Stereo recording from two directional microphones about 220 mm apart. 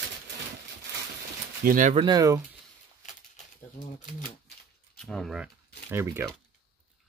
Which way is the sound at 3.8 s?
35° left (ahead or behind).